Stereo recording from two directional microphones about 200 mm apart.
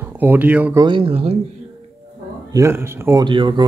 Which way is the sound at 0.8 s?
25° right (ahead or behind).